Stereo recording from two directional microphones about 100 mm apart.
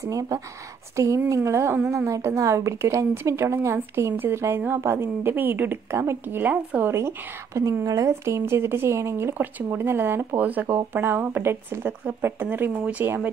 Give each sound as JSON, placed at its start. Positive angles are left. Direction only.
{"t": 0.0, "sound": "a sound", "side_deg": -35}
{"t": 1.9, "sound": "speech", "side_deg": -30}
{"t": 6.9, "sound": "speech", "side_deg": -25}